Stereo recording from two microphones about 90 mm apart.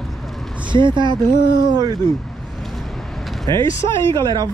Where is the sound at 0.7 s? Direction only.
60° right (ahead or behind).